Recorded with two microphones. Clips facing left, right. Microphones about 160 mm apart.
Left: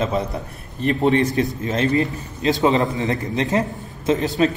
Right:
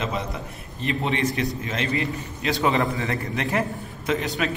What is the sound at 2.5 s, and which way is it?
A man's voice, 20° left (ahead or behind).